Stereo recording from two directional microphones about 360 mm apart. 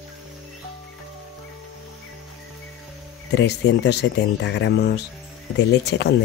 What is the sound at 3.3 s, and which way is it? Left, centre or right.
Speech, left.